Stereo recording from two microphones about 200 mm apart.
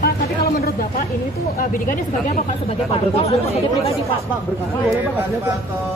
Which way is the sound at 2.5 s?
30° left (ahead or behind).